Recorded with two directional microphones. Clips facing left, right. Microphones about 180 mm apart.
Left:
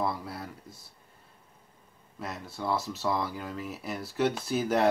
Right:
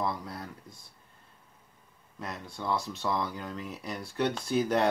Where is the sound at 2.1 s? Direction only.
5° left (ahead or behind).